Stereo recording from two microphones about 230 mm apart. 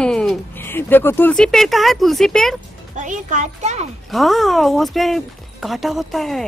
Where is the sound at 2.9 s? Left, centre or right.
Right.